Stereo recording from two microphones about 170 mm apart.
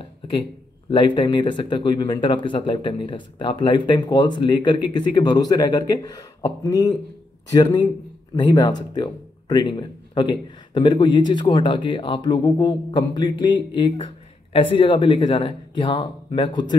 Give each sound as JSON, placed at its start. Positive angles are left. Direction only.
{"t": 0.8, "sound": "speech", "side_deg": 30}